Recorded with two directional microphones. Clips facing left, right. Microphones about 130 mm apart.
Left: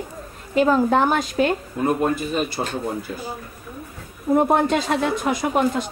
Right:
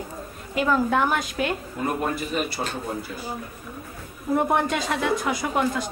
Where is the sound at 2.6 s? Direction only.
25° left (ahead or behind).